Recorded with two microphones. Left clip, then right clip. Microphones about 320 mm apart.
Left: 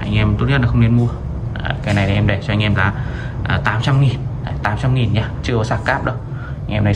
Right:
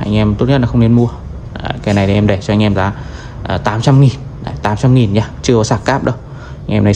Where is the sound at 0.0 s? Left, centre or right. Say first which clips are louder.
Right 6 dB; centre.